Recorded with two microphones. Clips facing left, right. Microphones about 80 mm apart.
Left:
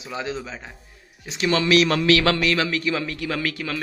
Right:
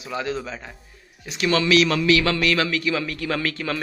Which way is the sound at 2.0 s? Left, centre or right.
Left.